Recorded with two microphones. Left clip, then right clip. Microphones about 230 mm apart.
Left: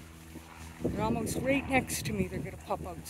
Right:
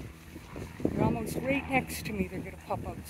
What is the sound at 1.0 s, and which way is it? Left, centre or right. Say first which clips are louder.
Speech: even; centre.